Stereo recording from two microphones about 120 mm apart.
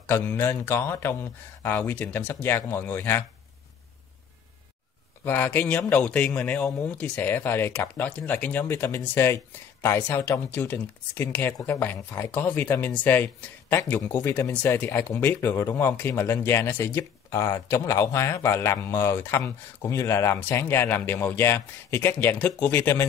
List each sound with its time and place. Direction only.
0.0 s a man's voice: 15° left (ahead or behind)
5.2 s a man's voice: 15° left (ahead or behind)